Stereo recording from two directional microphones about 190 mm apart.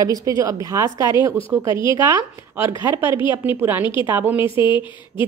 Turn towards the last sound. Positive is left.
turn(degrees=25)  # may be behind; listen again after turning